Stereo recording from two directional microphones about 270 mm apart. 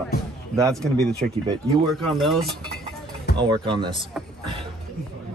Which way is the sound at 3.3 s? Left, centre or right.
Centre.